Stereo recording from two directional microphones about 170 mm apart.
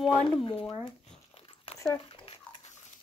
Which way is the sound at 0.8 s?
30° left (ahead or behind).